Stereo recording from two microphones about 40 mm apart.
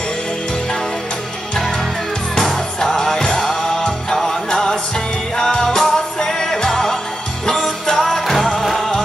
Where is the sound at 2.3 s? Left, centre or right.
Centre.